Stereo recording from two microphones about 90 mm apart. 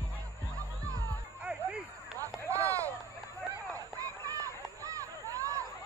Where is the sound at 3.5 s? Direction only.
40° right (ahead or behind).